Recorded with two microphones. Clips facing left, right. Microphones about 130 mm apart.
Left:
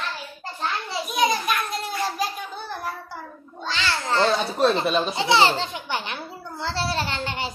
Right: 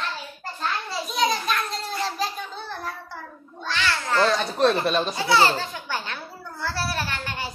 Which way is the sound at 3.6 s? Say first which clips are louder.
Even; 25° left (ahead or behind).